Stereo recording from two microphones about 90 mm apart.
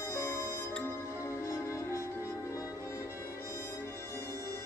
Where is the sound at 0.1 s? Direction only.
25° left (ahead or behind).